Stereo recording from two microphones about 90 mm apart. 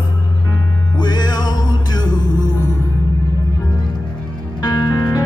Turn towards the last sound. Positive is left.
turn(degrees=50)  # may be behind; listen again after turning